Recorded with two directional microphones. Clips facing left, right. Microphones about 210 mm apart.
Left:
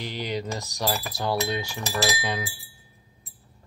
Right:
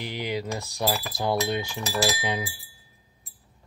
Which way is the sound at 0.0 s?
15° right (ahead or behind).